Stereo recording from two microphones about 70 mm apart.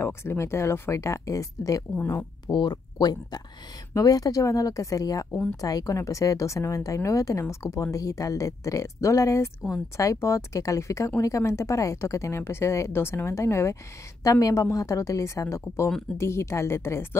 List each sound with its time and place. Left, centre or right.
0.0 s speech: left
2.4 s speech: left
3.9 s speech: left
14.2 s a woman's voice: left